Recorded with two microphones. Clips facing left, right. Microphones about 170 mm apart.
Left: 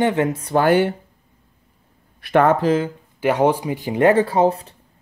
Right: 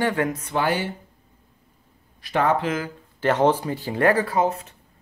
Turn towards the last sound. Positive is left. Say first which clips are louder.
# left 5 dB
turn(degrees=30)  # may be behind; listen again after turning